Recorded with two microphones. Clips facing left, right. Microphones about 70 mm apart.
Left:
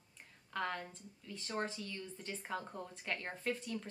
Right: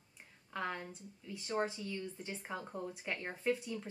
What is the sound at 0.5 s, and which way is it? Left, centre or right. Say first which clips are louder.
Speech: even; centre.